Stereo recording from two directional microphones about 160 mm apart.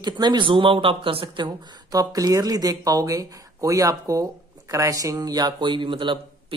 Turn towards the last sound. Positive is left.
turn(degrees=-30)  # may be behind; listen again after turning